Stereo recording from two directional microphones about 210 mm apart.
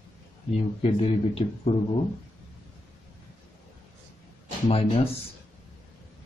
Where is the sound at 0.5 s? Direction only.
25° left (ahead or behind).